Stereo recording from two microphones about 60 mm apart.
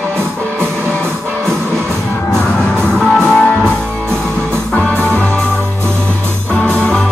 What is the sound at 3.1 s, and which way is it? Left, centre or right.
Music, centre.